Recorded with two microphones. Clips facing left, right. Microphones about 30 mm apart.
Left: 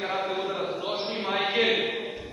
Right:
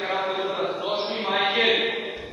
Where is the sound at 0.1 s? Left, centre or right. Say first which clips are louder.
Right 3 dB; centre.